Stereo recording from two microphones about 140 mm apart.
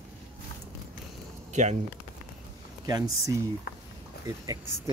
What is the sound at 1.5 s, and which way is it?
Speech, 55° right (ahead or behind).